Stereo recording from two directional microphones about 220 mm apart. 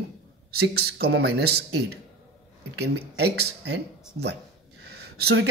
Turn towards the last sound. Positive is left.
turn(degrees=-50)  # may be behind; listen again after turning